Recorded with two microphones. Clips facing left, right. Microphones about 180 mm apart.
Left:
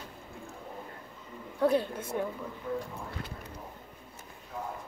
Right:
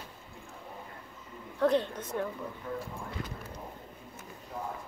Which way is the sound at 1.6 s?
10° left (ahead or behind).